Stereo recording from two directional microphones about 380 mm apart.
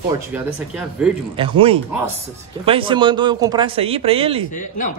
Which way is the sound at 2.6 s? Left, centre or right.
Centre.